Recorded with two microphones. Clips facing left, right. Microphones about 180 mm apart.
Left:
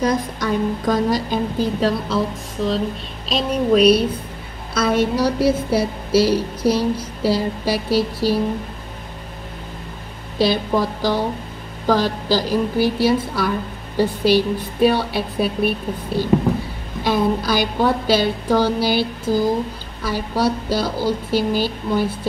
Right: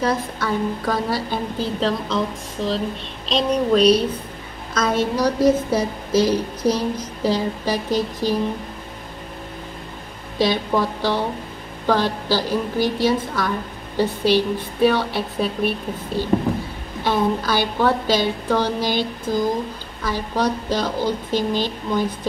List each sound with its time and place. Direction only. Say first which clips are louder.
0.0 s a woman's voice: left 2 dB; 15° left (ahead or behind)
10.4 s a woman's voice: left 1 dB; 10° left (ahead or behind)
17.0 s a woman's voice: left 1 dB; 10° left (ahead or behind)